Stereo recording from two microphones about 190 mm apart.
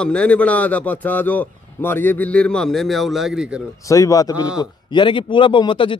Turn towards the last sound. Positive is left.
turn(degrees=25)  # may be behind; listen again after turning